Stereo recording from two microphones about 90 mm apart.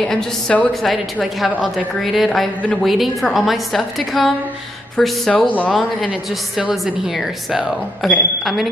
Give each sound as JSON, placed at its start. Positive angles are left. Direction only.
{"t": 0.0, "sound": "a woman's voice", "side_deg": 10}
{"t": 1.5, "sound": "a woman's voice", "side_deg": 15}
{"t": 2.0, "sound": "a woman's voice", "side_deg": 0}
{"t": 5.3, "sound": "a woman's voice", "side_deg": 15}
{"t": 6.6, "sound": "a woman's voice", "side_deg": -5}